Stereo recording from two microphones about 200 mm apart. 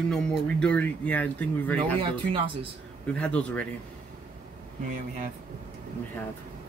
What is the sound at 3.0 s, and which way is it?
Speech, 5° left (ahead or behind).